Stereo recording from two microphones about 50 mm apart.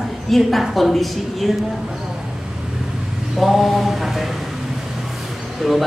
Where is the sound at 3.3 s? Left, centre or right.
Centre.